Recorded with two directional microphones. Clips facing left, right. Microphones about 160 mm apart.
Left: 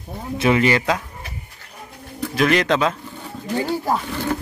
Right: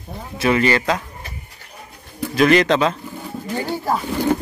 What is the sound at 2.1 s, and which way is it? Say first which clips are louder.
Speech: right 4 dB; centre (ahead or behind).